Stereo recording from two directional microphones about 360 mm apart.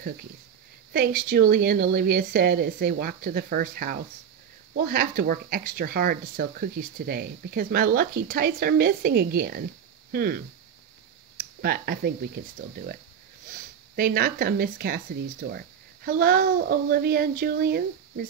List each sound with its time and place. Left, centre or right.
0.9 s speech: right